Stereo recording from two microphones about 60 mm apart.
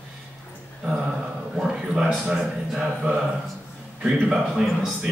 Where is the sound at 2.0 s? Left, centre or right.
Centre.